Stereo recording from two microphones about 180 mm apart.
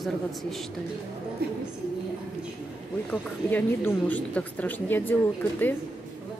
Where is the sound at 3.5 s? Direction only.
10° left (ahead or behind).